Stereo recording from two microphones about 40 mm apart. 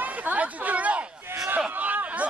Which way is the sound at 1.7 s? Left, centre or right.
Right.